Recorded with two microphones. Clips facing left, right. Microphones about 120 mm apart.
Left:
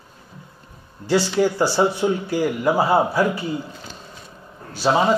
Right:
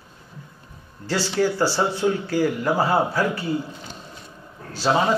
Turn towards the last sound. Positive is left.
turn(degrees=15)  # may be behind; listen again after turning